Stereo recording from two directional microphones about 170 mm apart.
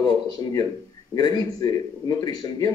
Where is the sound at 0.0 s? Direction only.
20° left (ahead or behind).